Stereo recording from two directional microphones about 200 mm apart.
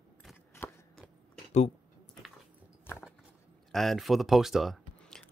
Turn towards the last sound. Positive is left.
turn(degrees=0)  # may be behind; listen again after turning